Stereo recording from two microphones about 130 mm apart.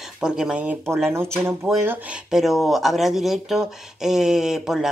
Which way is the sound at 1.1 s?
20° right (ahead or behind).